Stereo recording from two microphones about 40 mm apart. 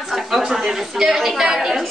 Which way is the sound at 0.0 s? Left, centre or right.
Centre.